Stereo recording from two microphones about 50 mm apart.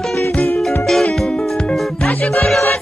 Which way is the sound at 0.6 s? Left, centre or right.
Centre.